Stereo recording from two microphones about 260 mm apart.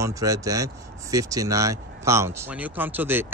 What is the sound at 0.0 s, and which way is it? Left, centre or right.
Speech, centre.